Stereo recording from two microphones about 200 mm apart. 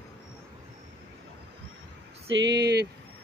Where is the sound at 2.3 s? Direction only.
60° right (ahead or behind).